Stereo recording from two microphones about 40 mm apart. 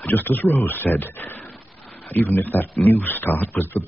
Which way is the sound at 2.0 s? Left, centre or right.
Left.